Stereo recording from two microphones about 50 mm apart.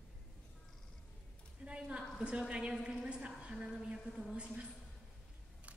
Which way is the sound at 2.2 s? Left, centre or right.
Right.